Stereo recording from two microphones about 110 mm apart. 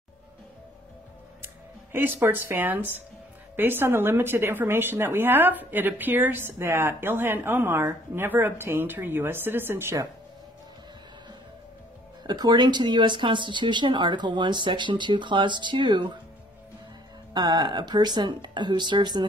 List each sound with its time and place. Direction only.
1.4 s a woman's voice: 20° right (ahead or behind)
12.2 s speech: 40° right (ahead or behind)
17.3 s speech: 40° right (ahead or behind)